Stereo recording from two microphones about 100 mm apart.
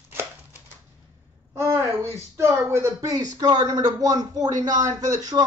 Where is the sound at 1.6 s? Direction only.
25° right (ahead or behind).